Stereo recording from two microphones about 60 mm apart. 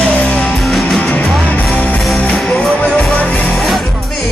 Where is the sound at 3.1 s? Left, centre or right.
Left.